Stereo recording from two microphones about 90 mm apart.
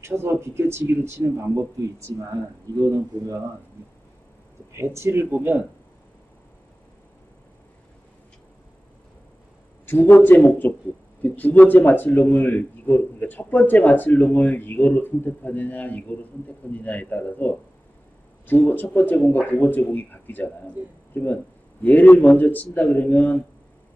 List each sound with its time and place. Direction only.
0.0 s speech: 30° right (ahead or behind)
2.8 s speech: 45° right (ahead or behind)
4.7 s speech: 30° right (ahead or behind)
9.8 s a man's voice: 20° left (ahead or behind)